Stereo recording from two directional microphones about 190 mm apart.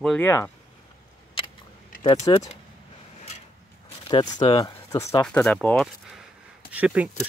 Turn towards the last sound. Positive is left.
turn(degrees=-10)  # may be behind; listen again after turning